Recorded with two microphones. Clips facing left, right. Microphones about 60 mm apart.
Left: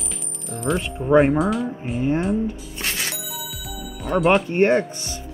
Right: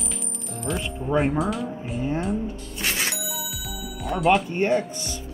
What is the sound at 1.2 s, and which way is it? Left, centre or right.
Speech, centre.